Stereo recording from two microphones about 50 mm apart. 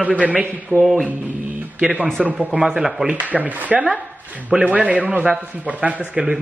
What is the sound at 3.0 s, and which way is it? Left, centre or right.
A man's voice, right.